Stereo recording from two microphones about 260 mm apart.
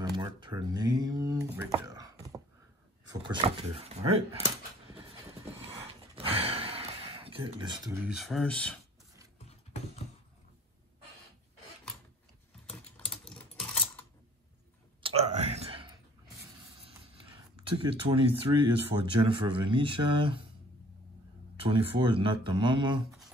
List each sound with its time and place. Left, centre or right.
0.1 s speech: centre
6.1 s gasp: right; by 8.7 s centre
12.7 s typing: centre
15.0 s clicking: right
17.6 s speech: right
21.5 s speech: right